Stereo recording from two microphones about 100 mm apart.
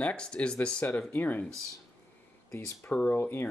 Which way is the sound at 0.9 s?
15° left (ahead or behind).